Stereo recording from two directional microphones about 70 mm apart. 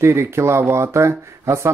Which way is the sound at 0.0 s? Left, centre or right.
Right.